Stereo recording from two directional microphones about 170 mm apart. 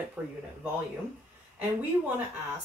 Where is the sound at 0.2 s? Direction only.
5° right (ahead or behind).